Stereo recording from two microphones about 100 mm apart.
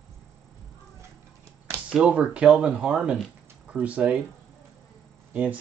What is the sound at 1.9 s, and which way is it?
Speech, 10° right (ahead or behind).